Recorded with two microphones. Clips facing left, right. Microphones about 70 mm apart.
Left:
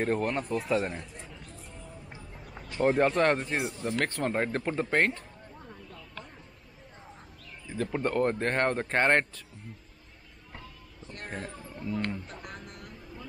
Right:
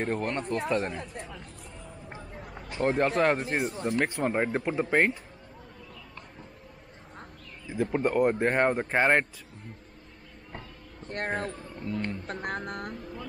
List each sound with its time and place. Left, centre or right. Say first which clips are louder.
0.0 s speech: left 1 dB; centre
2.8 s speech: left 1 dB; centre
7.6 s speech: right 3 dB; centre
11.0 s speech: right 8 dB; right
11.9 s a man's voice: even; centre
12.3 s speech: right 10 dB; right